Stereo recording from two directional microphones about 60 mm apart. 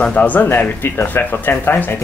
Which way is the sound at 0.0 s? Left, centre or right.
Left.